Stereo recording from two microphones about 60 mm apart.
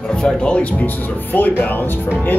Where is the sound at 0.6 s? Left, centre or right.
Left.